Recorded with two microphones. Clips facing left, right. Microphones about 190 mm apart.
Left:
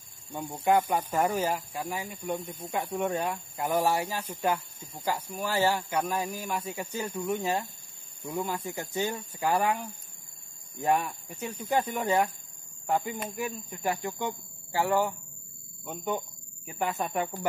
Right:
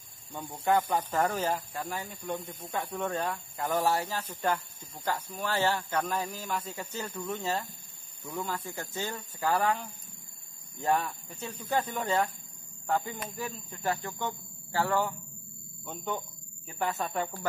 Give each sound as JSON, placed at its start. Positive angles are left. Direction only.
{"t": 0.3, "sound": "speech", "side_deg": 10}